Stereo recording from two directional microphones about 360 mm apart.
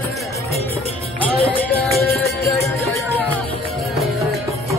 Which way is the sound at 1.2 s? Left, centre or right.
Centre.